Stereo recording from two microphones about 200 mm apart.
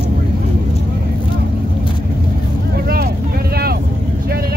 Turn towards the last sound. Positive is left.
turn(degrees=-50)  # may be behind; listen again after turning